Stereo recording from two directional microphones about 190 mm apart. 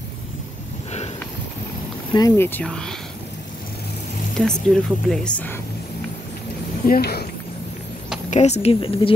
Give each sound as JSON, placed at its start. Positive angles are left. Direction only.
{"t": 2.1, "sound": "speech", "side_deg": 15}
{"t": 4.4, "sound": "speech", "side_deg": 0}
{"t": 6.9, "sound": "speech", "side_deg": 55}
{"t": 8.3, "sound": "a woman's voice", "side_deg": 35}